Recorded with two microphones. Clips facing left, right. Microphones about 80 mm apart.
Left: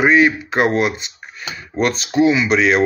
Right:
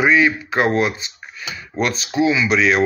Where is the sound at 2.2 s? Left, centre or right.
Left.